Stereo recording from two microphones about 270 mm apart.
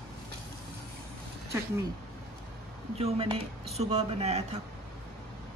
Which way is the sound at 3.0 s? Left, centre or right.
Right.